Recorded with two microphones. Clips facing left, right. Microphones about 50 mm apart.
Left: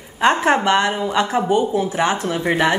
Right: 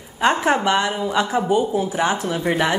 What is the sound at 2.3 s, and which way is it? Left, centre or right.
Speech, left.